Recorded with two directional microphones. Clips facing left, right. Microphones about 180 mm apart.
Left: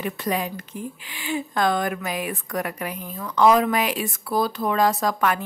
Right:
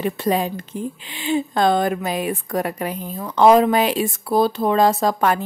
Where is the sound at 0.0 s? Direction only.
30° right (ahead or behind).